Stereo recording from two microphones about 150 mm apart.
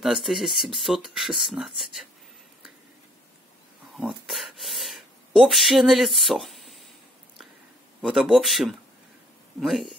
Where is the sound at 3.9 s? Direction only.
Centre (ahead or behind).